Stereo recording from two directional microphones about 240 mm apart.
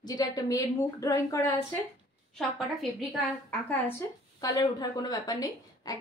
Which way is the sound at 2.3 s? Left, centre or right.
Centre.